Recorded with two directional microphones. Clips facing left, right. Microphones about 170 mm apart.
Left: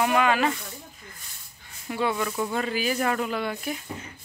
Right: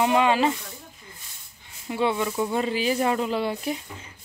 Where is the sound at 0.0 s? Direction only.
25° right (ahead or behind).